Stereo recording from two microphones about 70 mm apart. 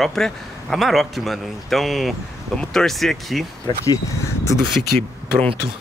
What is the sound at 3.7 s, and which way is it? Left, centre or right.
Speech, left.